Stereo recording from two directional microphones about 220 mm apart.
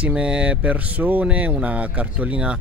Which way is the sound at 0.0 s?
5° right (ahead or behind).